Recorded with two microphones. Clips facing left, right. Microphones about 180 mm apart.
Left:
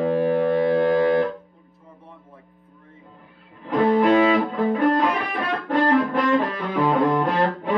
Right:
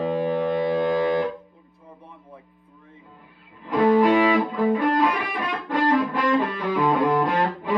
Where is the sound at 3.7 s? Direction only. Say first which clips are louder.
Even; 10° right (ahead or behind).